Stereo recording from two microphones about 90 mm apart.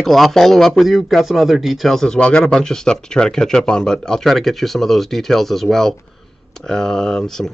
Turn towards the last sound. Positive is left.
turn(degrees=5)  # may be behind; listen again after turning